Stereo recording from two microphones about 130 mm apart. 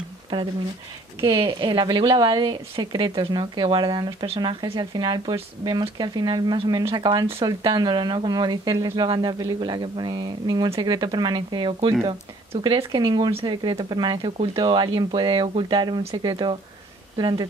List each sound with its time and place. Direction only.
1.2 s a woman's voice: 40° right (ahead or behind)
8.7 s speech: 25° right (ahead or behind)
9.0 s a woman's voice: 35° right (ahead or behind)
12.0 s speech: 50° right (ahead or behind)
12.6 s a woman's voice: 40° right (ahead or behind)